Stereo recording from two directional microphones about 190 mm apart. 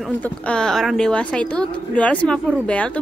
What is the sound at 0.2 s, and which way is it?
A woman's voice, 5° left (ahead or behind).